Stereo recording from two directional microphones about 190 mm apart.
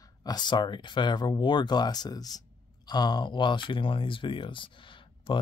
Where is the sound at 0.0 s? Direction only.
20° left (ahead or behind).